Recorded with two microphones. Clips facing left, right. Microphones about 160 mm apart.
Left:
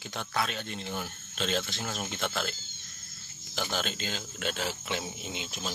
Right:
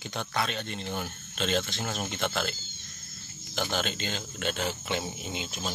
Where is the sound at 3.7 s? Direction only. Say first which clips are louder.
Right 1 dB; centre (ahead or behind).